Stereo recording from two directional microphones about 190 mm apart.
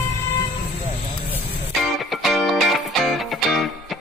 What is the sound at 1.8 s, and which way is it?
Music, centre (ahead or behind).